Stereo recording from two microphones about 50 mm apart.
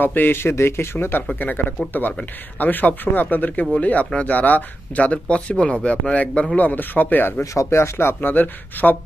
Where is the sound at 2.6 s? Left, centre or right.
Left.